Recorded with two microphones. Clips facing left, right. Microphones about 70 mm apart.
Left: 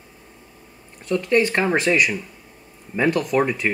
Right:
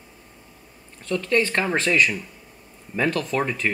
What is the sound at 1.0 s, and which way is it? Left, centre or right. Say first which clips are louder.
Speech: left 3 dB; centre.